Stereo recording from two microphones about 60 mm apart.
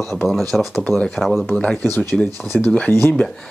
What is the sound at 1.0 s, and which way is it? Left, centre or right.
Speech, centre.